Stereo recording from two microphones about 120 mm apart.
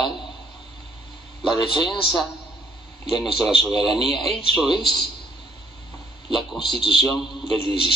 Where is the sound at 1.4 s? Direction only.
Centre (ahead or behind).